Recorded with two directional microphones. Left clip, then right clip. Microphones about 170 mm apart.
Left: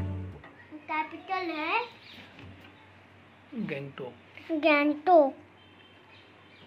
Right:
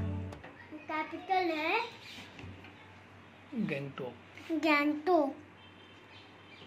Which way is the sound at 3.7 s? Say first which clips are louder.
Left 2 dB; 5° left (ahead or behind).